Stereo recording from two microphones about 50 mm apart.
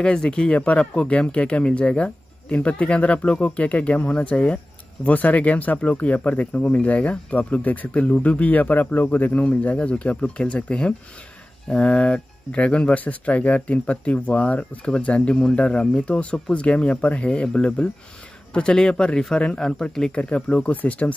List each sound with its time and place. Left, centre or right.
0.0 s speech: centre
20.7 s speech: left